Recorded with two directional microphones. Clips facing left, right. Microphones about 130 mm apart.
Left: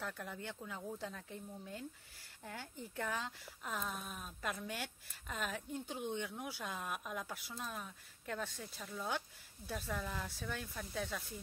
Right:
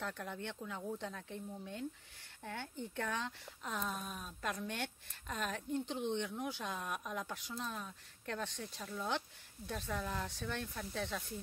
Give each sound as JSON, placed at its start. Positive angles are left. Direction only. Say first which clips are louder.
{"t": 0.0, "sound": "a woman's voice", "louder": "right 2 dB", "side_deg": 0}